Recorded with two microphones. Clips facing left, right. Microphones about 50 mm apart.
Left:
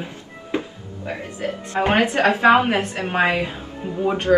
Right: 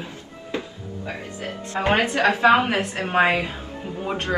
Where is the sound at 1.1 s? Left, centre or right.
Left.